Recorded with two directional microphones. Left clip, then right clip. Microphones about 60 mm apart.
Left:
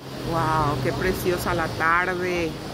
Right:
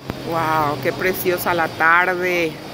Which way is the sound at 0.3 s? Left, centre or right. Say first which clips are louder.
Right 4 dB; right.